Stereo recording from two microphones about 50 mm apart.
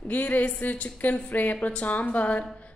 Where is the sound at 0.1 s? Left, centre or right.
Left.